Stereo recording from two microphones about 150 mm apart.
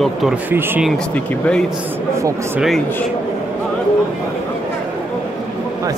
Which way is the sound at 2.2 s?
20° right (ahead or behind).